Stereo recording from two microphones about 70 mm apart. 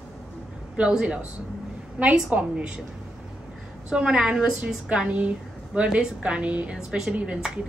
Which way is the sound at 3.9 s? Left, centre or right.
Centre.